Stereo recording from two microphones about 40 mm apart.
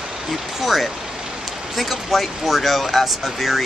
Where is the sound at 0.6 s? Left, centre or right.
Centre.